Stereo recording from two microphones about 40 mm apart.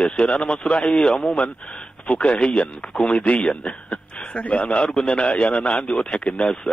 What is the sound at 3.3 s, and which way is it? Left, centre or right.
A man's voice, left.